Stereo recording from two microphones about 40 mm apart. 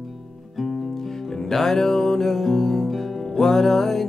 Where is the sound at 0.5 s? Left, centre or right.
Centre.